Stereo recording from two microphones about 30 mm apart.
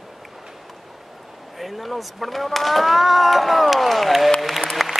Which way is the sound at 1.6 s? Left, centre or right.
Centre.